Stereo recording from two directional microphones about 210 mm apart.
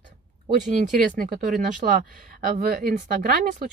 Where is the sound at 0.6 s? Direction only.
40° right (ahead or behind).